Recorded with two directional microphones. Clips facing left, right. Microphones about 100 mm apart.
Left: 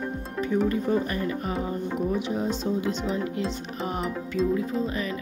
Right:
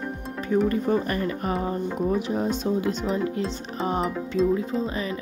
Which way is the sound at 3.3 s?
35° right (ahead or behind).